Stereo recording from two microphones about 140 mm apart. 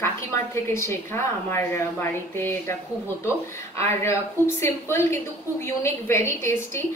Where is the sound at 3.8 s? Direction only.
20° left (ahead or behind).